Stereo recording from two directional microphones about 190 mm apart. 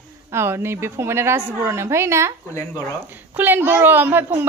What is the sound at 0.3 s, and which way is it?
A woman's voice, 15° right (ahead or behind).